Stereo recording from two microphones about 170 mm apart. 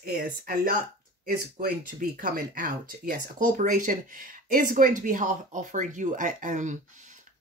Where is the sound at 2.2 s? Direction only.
55° right (ahead or behind).